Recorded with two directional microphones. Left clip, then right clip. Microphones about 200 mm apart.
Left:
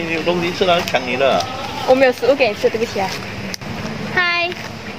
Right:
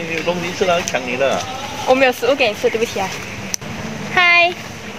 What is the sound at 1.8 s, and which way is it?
Speech, 10° right (ahead or behind).